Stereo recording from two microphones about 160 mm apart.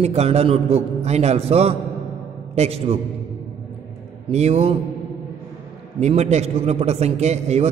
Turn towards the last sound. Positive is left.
turn(degrees=-45)  # may be behind; listen again after turning